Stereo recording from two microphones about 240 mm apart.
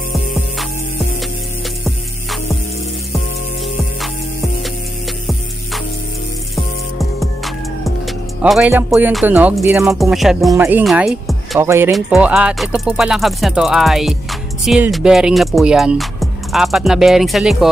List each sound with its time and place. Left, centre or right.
6.5 s music: centre
9.9 s speech: centre